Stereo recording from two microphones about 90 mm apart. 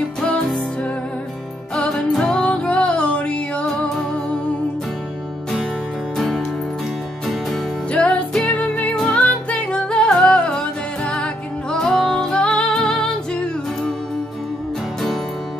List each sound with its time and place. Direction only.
0.2 s music: 10° left (ahead or behind)
6.1 s music: 5° left (ahead or behind)